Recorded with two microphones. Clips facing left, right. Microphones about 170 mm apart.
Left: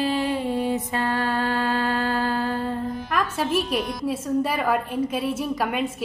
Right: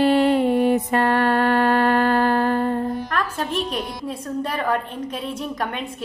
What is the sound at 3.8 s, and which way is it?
Speech, 30° right (ahead or behind).